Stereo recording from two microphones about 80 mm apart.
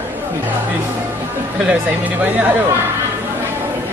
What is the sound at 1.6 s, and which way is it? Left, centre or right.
Speech, centre.